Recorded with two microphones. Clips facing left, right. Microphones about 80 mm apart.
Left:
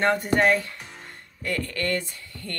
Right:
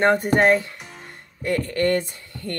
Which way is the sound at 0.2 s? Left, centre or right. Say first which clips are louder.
Right 3 dB; right.